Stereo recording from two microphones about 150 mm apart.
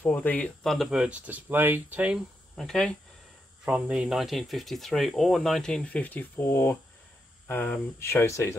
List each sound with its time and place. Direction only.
0.0 s speech: 10° left (ahead or behind)
0.7 s speech: centre (ahead or behind)
3.6 s speech: 5° right (ahead or behind); by 8.5 s 20° left (ahead or behind)